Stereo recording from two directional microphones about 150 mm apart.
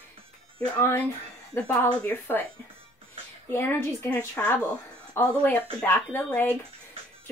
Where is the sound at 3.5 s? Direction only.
15° left (ahead or behind).